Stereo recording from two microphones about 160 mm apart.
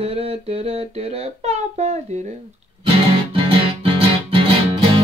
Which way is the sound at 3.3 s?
35° right (ahead or behind).